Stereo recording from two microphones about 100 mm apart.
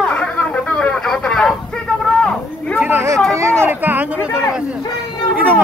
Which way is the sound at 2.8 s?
20° right (ahead or behind).